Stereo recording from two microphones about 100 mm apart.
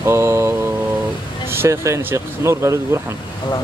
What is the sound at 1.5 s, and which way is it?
Speech, 25° right (ahead or behind).